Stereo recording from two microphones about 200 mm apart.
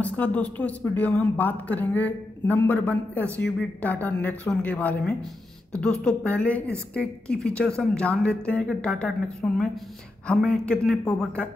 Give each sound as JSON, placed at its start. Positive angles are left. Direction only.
{"t": 0.0, "sound": "a woman's voice", "side_deg": 5}